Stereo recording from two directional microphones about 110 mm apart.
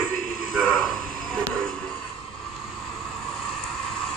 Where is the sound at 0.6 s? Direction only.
5° left (ahead or behind).